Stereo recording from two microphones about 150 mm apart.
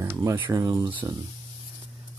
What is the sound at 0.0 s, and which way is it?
Speech, 20° right (ahead or behind).